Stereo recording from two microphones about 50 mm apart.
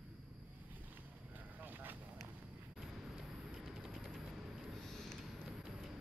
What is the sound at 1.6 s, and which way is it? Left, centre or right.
Vehicle, right.